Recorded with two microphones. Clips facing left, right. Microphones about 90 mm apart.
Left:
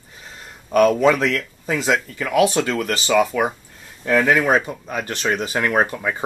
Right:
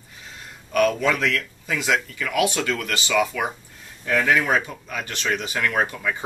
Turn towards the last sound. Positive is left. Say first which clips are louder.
# left 4 dB
turn(degrees=35)  # may be behind; listen again after turning